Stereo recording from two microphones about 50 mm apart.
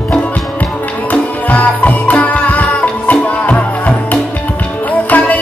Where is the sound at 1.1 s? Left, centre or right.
Left.